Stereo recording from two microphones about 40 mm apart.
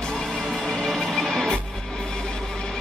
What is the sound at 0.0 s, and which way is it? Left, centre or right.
Music, centre.